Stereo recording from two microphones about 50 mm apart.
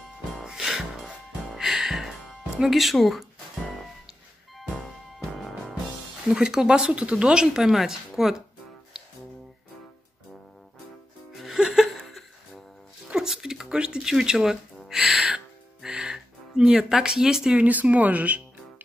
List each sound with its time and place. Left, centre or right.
0.3 s music: centre
2.7 s speech: centre
4.6 s music: centre
6.2 s speech: centre
11.3 s music: centre
12.0 s a sound: centre
13.1 s music: centre
17.6 s a woman's voice: right